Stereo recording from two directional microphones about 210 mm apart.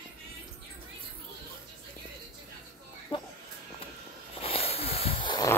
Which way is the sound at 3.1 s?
25° left (ahead or behind).